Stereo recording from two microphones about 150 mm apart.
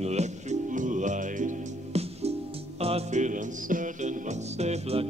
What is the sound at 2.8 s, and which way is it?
Music, 45° right (ahead or behind).